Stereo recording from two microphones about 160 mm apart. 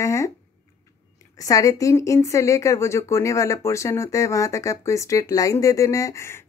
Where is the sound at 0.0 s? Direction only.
20° left (ahead or behind).